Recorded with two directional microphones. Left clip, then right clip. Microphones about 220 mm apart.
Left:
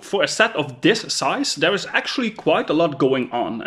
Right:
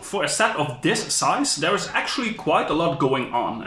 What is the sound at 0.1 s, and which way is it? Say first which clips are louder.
Speech: left 3 dB; 45° left (ahead or behind).